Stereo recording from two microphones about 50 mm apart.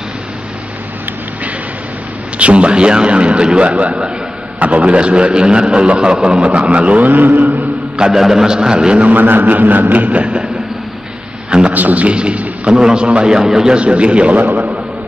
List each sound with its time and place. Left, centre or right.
2.3 s a man's voice: right
8.0 s a man's voice: centre
9.1 s a man's voice: right
11.7 s a man's voice: right; by 13.7 s centre
13.7 s a man's voice: right
14.3 s a sound: right